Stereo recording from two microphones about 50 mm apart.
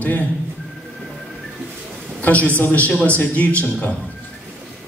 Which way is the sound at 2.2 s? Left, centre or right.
Left.